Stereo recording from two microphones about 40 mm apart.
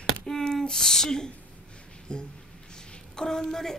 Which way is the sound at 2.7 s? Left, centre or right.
Centre.